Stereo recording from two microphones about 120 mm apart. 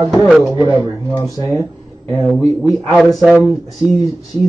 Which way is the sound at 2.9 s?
Centre (ahead or behind).